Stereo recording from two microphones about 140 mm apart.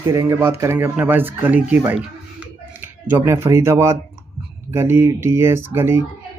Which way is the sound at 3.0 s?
15° right (ahead or behind).